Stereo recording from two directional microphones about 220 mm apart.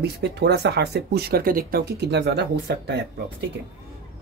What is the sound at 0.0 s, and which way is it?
Speech, 50° right (ahead or behind).